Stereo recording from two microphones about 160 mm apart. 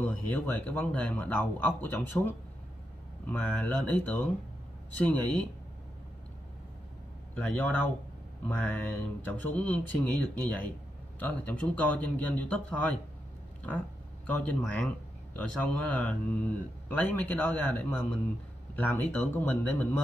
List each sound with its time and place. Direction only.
0.0 s speech: 10° left (ahead or behind)
7.3 s speech: 10° left (ahead or behind)
14.2 s speech: 10° left (ahead or behind)